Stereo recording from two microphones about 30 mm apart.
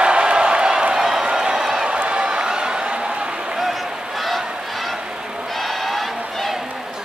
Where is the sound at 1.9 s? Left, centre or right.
Right.